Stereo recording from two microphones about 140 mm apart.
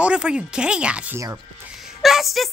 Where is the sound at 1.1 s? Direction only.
25° right (ahead or behind).